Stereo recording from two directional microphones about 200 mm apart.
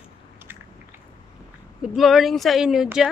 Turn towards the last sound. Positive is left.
turn(degrees=-5)  # may be behind; listen again after turning